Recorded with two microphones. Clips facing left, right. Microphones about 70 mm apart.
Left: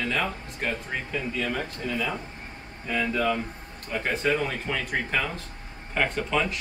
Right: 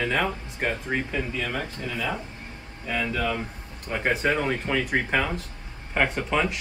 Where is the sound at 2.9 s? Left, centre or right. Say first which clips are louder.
Left 1 dB; centre.